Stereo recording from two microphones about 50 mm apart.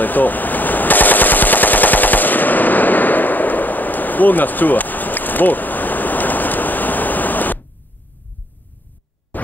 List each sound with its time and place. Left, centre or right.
0.0 s machine gun: left
9.3 s scratch: left